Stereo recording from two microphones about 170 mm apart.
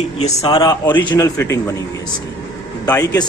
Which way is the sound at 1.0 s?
20° left (ahead or behind).